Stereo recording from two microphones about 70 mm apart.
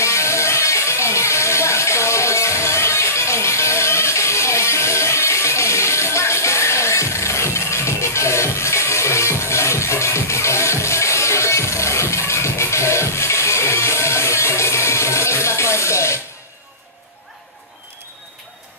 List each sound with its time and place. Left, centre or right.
0.0 s music: left